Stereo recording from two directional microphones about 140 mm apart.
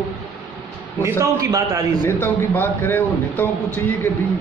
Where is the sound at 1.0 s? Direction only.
20° right (ahead or behind).